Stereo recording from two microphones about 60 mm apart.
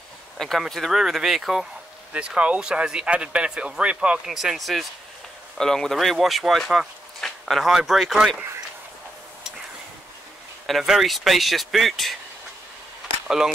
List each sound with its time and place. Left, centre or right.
0.4 s speech: centre
2.1 s speech: centre
4.3 s speech: centre
7.2 s a sound: centre
7.7 s speech: centre
10.7 s speech: centre